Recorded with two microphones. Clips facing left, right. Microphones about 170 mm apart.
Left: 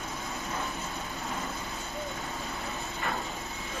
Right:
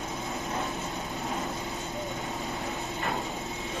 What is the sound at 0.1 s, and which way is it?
Vehicle, 20° right (ahead or behind).